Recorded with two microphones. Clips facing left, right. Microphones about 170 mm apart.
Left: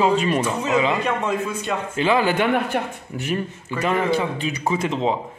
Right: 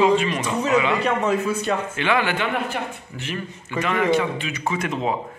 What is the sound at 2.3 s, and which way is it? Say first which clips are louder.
Speech: left 4 dB; 45° left (ahead or behind).